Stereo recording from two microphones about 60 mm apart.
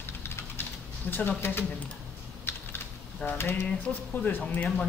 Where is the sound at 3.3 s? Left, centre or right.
Left.